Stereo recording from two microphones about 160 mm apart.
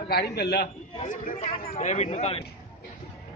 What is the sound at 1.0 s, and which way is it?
Speech, 50° left (ahead or behind).